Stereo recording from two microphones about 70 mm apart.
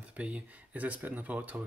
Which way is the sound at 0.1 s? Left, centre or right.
Centre.